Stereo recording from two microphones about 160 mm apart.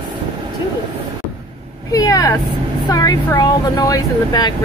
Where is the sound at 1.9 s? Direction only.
20° left (ahead or behind).